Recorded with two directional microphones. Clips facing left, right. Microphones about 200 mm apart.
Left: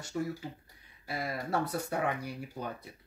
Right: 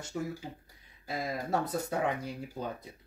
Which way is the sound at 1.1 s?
20° right (ahead or behind).